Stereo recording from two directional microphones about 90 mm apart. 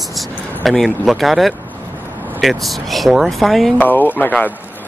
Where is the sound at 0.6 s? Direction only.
Centre (ahead or behind).